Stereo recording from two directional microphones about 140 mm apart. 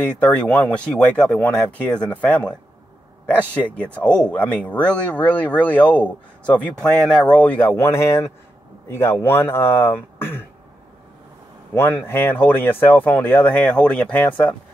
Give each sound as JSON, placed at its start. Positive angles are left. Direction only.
{"t": 0.0, "sound": "a man's voice", "side_deg": 10}
{"t": 11.7, "sound": "a man's voice", "side_deg": 15}